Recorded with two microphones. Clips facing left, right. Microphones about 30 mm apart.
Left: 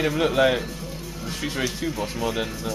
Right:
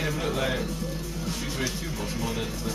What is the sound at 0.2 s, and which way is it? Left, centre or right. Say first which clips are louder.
Speech: left 11 dB; left.